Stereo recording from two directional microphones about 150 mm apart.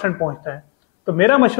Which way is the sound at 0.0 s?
25° left (ahead or behind).